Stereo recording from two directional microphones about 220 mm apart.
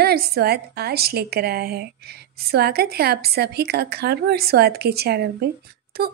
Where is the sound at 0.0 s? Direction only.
45° right (ahead or behind).